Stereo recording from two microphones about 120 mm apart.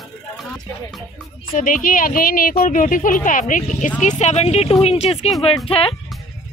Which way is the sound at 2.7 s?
90° left.